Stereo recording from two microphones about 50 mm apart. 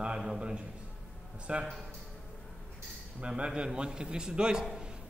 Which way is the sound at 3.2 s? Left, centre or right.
Centre.